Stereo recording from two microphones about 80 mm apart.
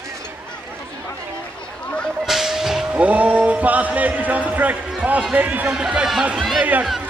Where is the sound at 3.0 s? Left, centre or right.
Centre.